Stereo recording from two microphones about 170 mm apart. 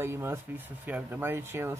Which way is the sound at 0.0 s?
15° right (ahead or behind).